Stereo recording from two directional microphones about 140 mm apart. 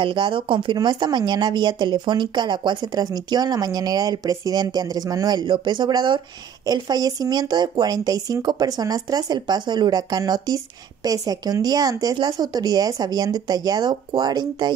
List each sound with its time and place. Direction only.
0.0 s speech: 35° right (ahead or behind)